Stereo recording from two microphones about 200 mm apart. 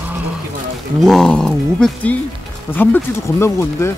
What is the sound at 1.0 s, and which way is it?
Speech, centre (ahead or behind).